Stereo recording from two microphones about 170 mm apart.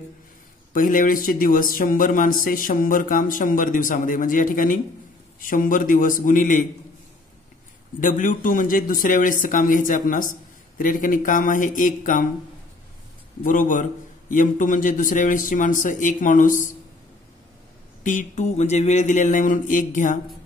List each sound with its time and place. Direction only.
0.7 s a man's voice: 50° left (ahead or behind)
8.0 s a man's voice: 50° left (ahead or behind)
13.4 s a man's voice: 50° left (ahead or behind)
18.0 s a man's voice: 45° left (ahead or behind)